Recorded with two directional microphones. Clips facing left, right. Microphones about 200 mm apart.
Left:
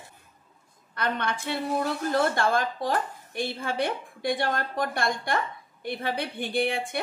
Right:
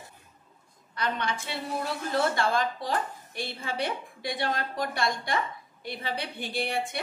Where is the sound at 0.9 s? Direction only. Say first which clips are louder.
Left 2 dB; 55° left (ahead or behind).